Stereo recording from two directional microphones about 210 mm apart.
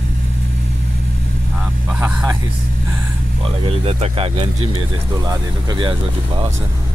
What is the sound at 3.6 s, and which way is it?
Speech, 30° right (ahead or behind).